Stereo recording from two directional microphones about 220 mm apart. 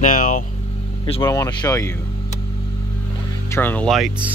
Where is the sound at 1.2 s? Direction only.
15° left (ahead or behind).